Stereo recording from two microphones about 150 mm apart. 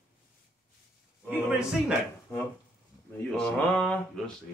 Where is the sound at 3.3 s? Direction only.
5° left (ahead or behind).